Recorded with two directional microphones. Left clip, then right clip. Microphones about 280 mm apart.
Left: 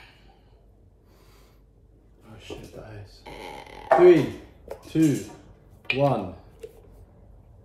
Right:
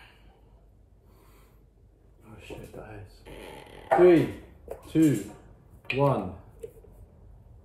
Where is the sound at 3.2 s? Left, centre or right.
Left.